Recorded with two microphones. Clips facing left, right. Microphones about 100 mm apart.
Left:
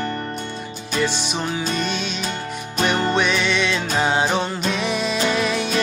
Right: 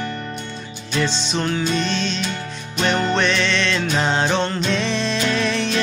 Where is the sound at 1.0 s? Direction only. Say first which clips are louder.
Right 1 dB; 10° left (ahead or behind).